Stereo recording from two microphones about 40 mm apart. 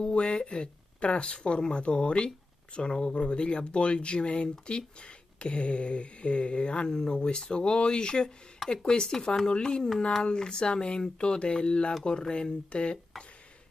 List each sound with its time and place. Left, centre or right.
0.0 s speech: left